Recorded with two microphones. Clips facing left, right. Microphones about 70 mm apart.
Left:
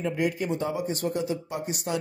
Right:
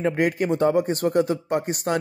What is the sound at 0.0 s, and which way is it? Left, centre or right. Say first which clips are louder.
A man's voice: right 5 dB; right.